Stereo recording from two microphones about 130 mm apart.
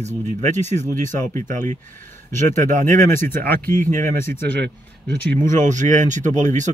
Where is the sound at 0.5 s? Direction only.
65° right (ahead or behind).